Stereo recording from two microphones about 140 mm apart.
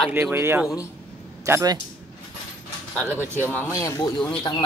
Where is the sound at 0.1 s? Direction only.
15° right (ahead or behind).